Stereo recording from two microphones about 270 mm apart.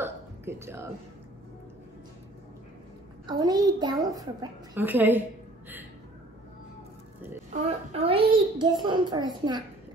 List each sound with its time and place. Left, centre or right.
0.0 s a sound: centre
3.3 s a child's voice: centre
7.5 s a woman's voice: right